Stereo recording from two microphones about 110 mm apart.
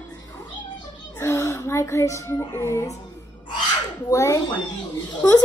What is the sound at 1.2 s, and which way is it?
Speech, 25° left (ahead or behind).